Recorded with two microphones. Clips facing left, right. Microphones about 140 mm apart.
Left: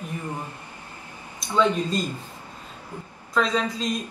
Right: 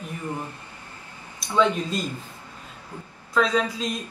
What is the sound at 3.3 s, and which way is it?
Speech, 5° right (ahead or behind).